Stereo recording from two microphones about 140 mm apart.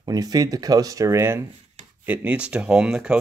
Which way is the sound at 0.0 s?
25° right (ahead or behind).